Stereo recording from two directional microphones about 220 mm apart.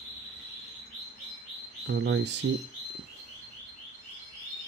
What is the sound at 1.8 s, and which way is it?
Speech, 50° right (ahead or behind).